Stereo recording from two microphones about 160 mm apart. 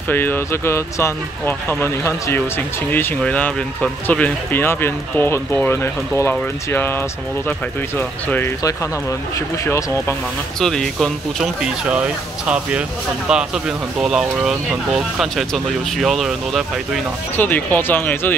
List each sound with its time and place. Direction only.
0.1 s speech: 15° left (ahead or behind)
9.7 s speech: 20° left (ahead or behind)
10.6 s speech: 5° left (ahead or behind)
17.4 s speech: 10° left (ahead or behind)